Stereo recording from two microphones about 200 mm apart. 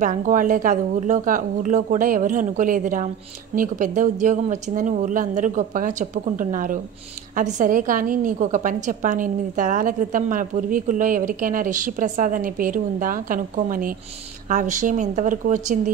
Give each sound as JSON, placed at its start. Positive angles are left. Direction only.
{"t": 0.0, "sound": "a woman's voice", "side_deg": -40}